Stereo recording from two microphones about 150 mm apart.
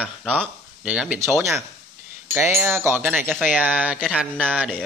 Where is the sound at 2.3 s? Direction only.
15° right (ahead or behind).